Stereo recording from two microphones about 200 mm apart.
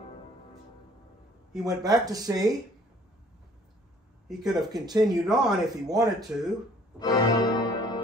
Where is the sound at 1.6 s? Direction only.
20° right (ahead or behind).